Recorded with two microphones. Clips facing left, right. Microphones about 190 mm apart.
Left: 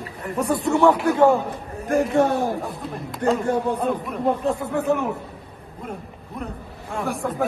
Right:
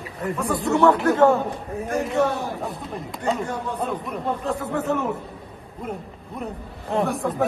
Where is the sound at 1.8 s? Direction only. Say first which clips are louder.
Left 4 dB; 50° left (ahead or behind).